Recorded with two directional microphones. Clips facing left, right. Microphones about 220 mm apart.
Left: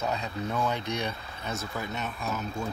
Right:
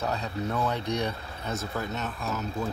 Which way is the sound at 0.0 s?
Centre (ahead or behind).